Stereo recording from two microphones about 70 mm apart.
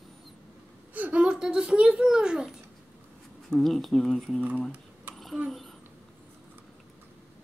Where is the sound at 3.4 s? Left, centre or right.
Centre.